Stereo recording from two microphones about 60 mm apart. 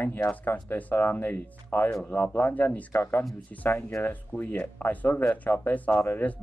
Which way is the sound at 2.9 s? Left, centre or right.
Left.